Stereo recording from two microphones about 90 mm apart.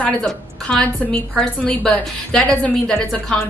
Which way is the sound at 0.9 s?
15° left (ahead or behind).